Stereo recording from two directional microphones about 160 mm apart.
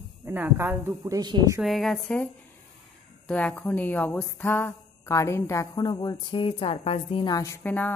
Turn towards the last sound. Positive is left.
turn(degrees=10)  # may be behind; listen again after turning